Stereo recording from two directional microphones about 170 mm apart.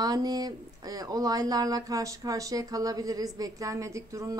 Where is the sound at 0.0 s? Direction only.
20° right (ahead or behind).